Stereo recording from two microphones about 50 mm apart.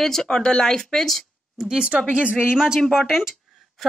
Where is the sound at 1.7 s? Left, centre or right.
Centre.